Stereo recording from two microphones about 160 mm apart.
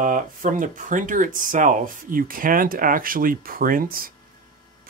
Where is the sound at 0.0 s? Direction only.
55° right (ahead or behind).